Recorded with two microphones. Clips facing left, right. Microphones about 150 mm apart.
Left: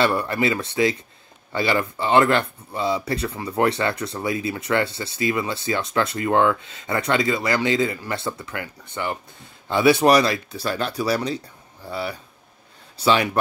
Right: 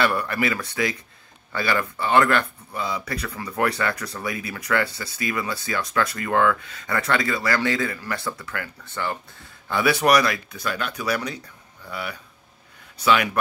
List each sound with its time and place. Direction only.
0.0 s speech: 25° left (ahead or behind)